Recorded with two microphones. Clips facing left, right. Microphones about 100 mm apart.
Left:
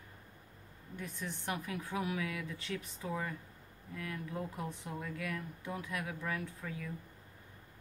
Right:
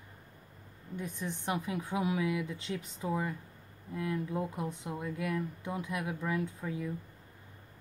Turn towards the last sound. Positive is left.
turn(degrees=-20)  # may be behind; listen again after turning